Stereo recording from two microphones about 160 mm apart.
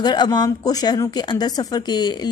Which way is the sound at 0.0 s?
25° left (ahead or behind).